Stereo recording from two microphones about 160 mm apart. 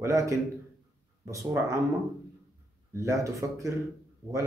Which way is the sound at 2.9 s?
20° right (ahead or behind).